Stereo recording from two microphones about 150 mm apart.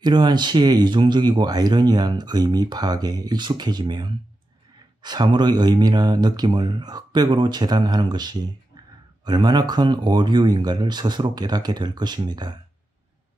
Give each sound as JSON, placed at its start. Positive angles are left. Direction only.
{"t": 0.0, "sound": "speech", "side_deg": -30}